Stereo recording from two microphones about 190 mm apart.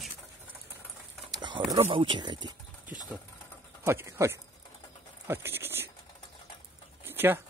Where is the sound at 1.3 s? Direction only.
25° right (ahead or behind).